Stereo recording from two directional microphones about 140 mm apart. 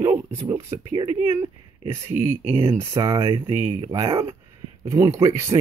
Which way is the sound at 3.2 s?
35° right (ahead or behind).